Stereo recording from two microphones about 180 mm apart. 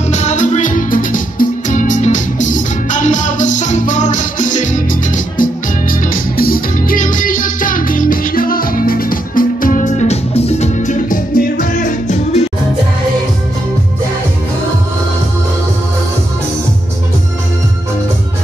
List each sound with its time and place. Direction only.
0.1 s music: 40° left (ahead or behind)